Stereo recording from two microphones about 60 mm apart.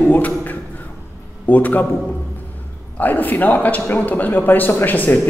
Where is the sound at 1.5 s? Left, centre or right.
Left.